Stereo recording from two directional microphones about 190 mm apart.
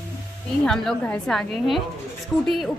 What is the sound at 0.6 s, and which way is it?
A woman's voice, 5° left (ahead or behind).